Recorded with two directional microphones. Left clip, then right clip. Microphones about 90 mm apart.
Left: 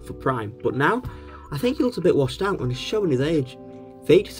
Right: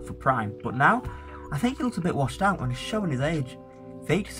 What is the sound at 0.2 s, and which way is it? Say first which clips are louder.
Speech: left 1 dB; 30° left (ahead or behind).